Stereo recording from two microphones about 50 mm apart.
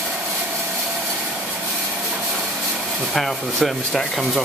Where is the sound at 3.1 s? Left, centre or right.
Centre.